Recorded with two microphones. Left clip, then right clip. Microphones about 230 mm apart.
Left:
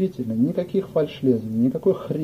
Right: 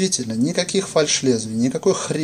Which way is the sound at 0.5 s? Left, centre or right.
Centre.